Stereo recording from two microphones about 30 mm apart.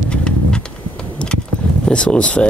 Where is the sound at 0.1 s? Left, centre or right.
Left.